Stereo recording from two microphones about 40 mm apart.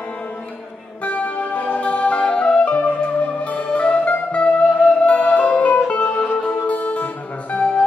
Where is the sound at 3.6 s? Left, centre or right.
Left.